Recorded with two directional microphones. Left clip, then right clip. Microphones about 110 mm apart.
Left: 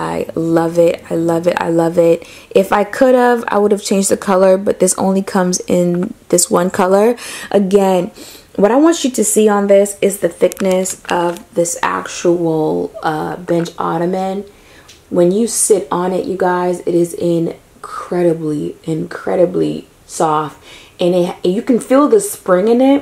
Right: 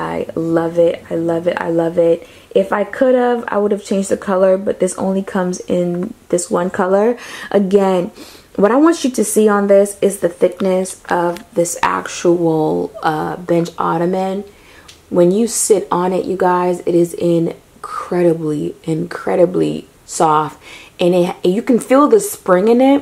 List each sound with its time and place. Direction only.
0.0 s speech: 15° left (ahead or behind); by 22.9 s centre (ahead or behind)